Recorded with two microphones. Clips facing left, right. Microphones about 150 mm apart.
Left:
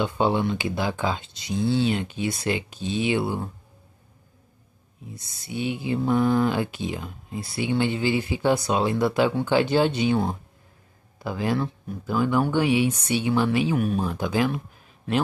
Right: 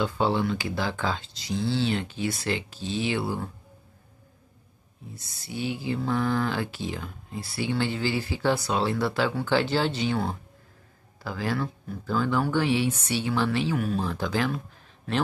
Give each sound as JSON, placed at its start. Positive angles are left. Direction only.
{"t": 0.0, "sound": "speech", "side_deg": 20}
{"t": 5.1, "sound": "speech", "side_deg": 20}